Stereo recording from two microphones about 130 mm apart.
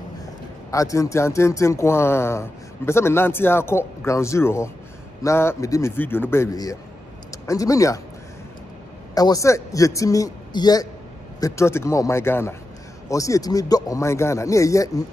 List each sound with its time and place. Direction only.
0.7 s speech: 25° left (ahead or behind)
9.1 s speech: 30° left (ahead or behind)